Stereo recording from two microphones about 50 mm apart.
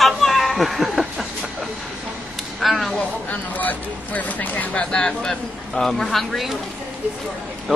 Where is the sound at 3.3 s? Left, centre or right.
Left.